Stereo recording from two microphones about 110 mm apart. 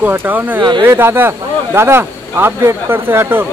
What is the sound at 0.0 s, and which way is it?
Speech, 15° right (ahead or behind).